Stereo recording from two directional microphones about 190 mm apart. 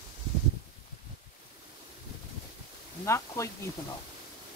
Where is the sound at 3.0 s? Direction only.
15° left (ahead or behind).